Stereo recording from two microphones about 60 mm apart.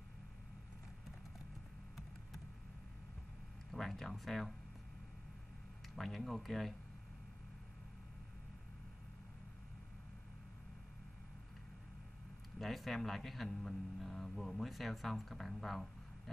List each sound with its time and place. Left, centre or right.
3.7 s speech: centre
5.9 s speech: centre
12.5 s speech: centre